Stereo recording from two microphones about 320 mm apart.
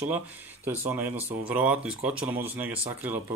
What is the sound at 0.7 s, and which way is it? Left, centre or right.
A man's voice, centre.